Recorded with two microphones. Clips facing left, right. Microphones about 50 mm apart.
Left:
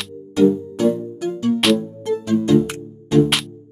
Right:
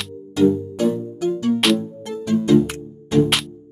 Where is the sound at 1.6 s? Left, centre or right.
Centre.